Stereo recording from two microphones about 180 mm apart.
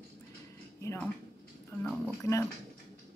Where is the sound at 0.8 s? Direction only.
15° left (ahead or behind).